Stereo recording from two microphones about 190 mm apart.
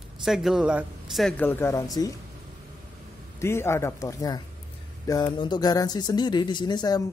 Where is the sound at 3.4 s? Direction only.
15° left (ahead or behind).